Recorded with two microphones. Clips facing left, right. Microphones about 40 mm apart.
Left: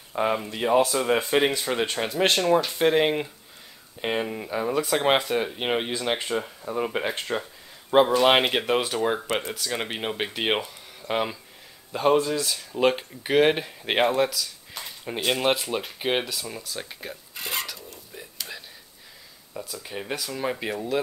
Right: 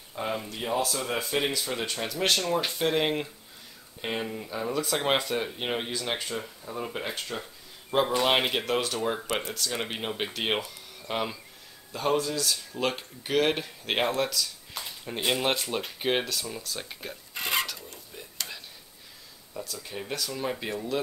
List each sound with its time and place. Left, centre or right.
0.1 s speech: left
0.7 s speech: left
2.8 s speech: centre
6.8 s speech: left
7.3 s speech: left
8.2 s speech: left
11.9 s speech: left; by 16.6 s centre
16.6 s a sound: centre
19.5 s speech: centre